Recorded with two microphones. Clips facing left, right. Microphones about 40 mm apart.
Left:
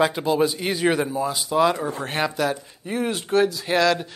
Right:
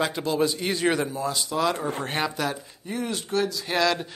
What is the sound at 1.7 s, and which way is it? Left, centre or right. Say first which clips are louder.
Speech: left 1 dB; right.